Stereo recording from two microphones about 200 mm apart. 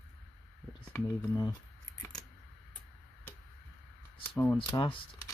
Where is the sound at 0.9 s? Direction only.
15° left (ahead or behind).